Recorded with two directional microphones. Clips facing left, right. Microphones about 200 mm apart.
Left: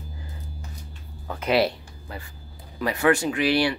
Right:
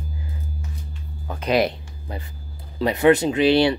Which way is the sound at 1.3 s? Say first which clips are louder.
Right 2 dB; 15° right (ahead or behind).